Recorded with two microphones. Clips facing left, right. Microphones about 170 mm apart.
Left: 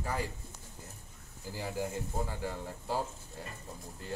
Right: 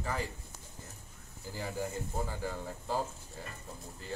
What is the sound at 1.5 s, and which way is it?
Speech, 10° left (ahead or behind).